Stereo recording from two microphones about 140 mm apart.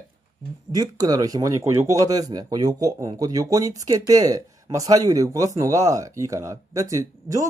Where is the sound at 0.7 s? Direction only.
25° right (ahead or behind).